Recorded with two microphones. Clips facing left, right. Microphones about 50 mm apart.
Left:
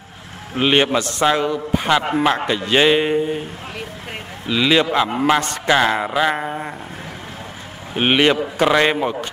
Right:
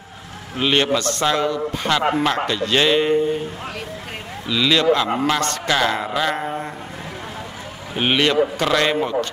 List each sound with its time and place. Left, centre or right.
0.6 s a man's voice: centre
4.5 s a man's voice: centre
7.9 s a man's voice: left